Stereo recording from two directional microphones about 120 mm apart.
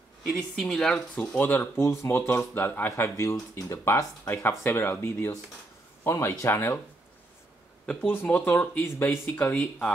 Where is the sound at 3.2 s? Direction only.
25° left (ahead or behind).